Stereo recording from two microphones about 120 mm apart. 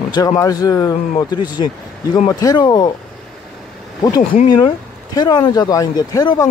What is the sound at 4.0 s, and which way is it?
Speech, 35° left (ahead or behind).